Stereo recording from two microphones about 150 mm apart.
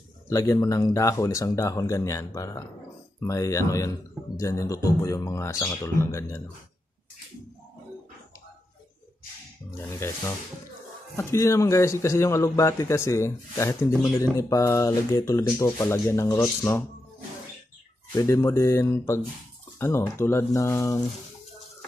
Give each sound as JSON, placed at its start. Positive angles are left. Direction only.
{"t": 0.3, "sound": "a man's voice", "side_deg": 20}
{"t": 9.8, "sound": "a man's voice", "side_deg": 15}
{"t": 18.1, "sound": "a man's voice", "side_deg": 20}